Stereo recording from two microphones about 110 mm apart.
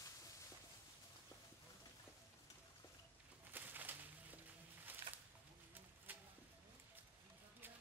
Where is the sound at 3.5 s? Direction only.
15° right (ahead or behind).